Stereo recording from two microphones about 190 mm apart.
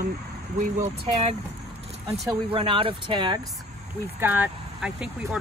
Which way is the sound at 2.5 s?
30° right (ahead or behind).